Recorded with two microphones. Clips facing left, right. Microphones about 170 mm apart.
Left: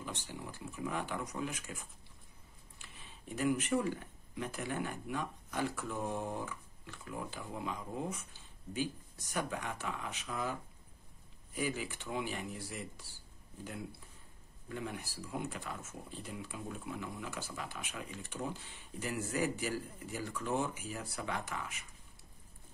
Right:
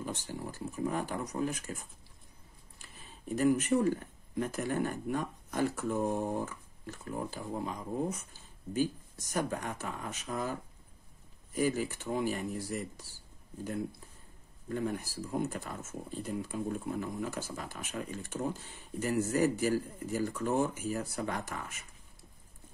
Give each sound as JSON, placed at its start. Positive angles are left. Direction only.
{"t": 0.0, "sound": "speech", "side_deg": -40}
{"t": 14.7, "sound": "speech", "side_deg": -40}